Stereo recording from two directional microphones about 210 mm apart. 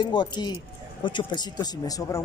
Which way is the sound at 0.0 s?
20° left (ahead or behind).